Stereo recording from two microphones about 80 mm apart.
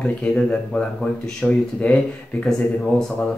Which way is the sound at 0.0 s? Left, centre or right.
Centre.